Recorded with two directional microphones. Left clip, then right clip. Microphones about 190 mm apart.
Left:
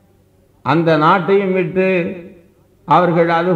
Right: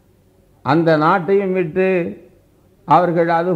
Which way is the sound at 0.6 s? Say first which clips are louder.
Left 1 dB; 30° right (ahead or behind).